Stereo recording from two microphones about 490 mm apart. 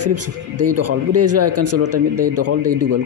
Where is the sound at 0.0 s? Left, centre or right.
Right.